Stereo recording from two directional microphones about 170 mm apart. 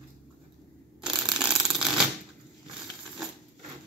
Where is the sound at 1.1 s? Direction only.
5° right (ahead or behind).